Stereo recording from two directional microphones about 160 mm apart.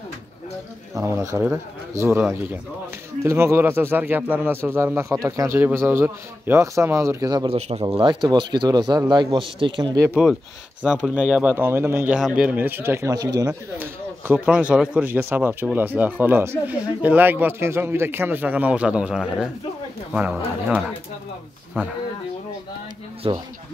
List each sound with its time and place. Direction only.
0.9 s a man's voice: 20° right (ahead or behind)
3.3 s a man's voice: 15° right (ahead or behind)
7.5 s speech: 40° right (ahead or behind)
7.8 s speech: 30° right (ahead or behind)
10.8 s a man's voice: 5° right (ahead or behind)
14.2 s a man's voice: 10° right (ahead or behind)
23.2 s speech: 35° right (ahead or behind)